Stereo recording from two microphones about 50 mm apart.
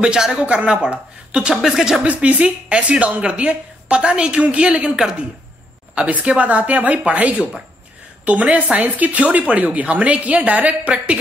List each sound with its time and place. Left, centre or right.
0.0 s speech: centre
1.6 s speech: centre
2.0 s speech: right
5.9 s a woman's voice: right